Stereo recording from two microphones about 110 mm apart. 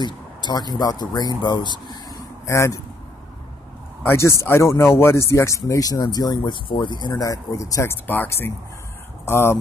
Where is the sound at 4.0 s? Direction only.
25° left (ahead or behind).